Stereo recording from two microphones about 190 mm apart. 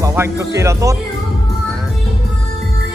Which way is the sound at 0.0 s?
15° right (ahead or behind).